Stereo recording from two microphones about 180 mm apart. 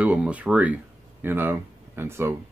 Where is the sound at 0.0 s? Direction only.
10° right (ahead or behind).